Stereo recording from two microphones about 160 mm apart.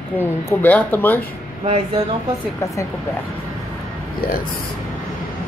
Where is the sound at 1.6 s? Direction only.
40° right (ahead or behind).